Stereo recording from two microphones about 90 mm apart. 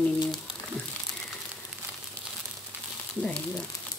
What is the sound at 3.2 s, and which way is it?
Speech, 15° left (ahead or behind).